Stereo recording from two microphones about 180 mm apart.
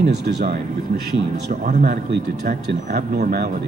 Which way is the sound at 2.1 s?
60° right (ahead or behind).